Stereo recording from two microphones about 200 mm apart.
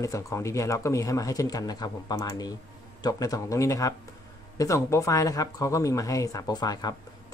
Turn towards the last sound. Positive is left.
turn(degrees=20)  # may be behind; listen again after turning